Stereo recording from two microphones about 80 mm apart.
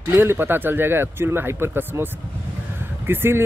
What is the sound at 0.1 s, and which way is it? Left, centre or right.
Speech, right.